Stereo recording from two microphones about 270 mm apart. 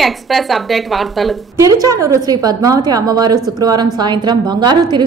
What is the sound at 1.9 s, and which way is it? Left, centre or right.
A woman's voice, centre.